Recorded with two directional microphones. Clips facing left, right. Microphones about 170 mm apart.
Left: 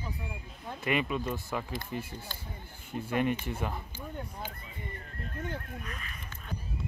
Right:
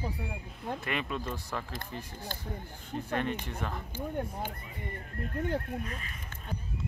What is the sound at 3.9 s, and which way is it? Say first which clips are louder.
Speech: right 6 dB; 50° right (ahead or behind).